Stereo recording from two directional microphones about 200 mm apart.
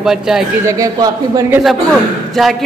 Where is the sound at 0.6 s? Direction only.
15° right (ahead or behind).